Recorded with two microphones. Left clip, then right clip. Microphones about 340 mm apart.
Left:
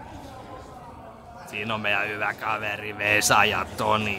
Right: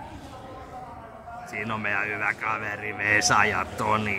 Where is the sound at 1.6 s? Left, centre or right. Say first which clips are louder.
Left 2 dB; centre.